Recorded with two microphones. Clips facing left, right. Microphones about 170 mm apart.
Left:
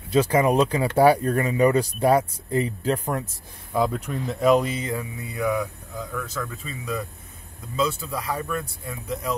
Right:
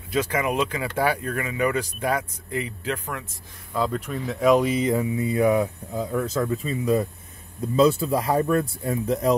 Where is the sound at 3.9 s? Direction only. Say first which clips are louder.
Even; centre (ahead or behind).